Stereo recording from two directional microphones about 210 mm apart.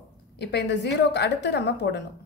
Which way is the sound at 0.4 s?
55° left (ahead or behind).